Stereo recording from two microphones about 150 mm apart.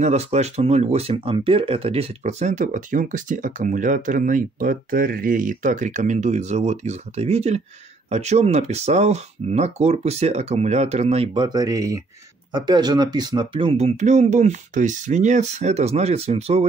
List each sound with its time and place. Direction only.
0.0 s speech: 45° right (ahead or behind)
11.4 s speech: 25° right (ahead or behind); by 16.6 s 45° right (ahead or behind)